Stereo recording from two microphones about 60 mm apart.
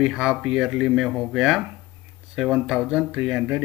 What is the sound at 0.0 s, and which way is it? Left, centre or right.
Speech, centre.